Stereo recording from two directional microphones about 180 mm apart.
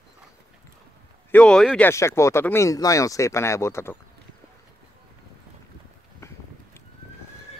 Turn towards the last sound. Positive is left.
turn(degrees=15)  # may be behind; listen again after turning